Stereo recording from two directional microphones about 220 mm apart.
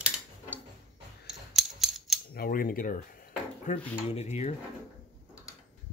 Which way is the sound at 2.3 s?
40° left (ahead or behind).